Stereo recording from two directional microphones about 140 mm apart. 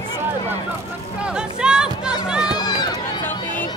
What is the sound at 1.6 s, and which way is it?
Music, 5° right (ahead or behind).